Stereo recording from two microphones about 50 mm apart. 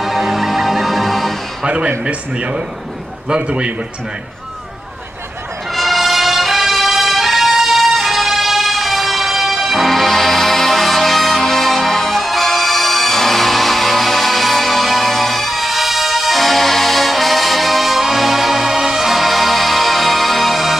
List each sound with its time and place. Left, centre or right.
0.0 s music: centre
2.0 s speech: right
5.7 s music: centre